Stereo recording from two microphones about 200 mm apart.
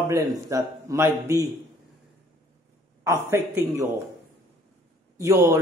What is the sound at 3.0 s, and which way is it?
Speech, 15° right (ahead or behind).